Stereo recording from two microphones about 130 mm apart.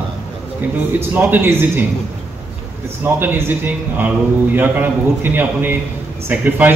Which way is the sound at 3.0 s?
15° right (ahead or behind).